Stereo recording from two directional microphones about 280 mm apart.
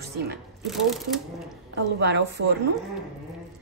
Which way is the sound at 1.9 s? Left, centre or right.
Right.